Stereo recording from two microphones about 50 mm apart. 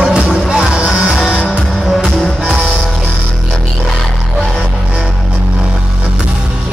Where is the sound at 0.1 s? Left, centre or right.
Centre.